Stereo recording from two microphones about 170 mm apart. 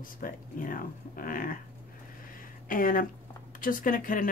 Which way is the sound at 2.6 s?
55° left (ahead or behind).